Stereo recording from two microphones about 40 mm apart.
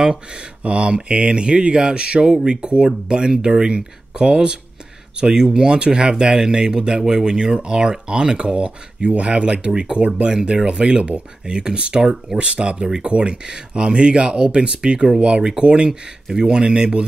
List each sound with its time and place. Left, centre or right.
0.0 s speech: right